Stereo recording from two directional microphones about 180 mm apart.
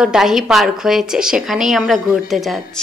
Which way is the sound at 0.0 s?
5° right (ahead or behind).